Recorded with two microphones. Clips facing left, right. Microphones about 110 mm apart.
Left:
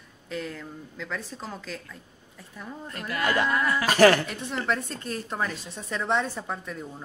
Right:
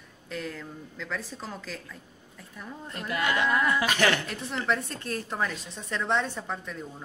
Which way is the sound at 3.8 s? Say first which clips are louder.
Left 7 dB; 40° left (ahead or behind).